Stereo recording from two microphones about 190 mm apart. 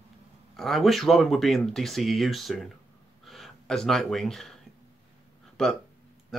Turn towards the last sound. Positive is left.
turn(degrees=5)  # may be behind; listen again after turning